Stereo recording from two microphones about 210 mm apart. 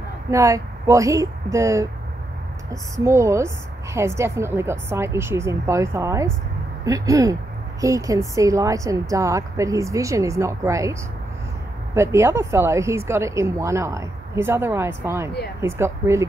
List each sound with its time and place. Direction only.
0.3 s a woman's voice: 15° right (ahead or behind)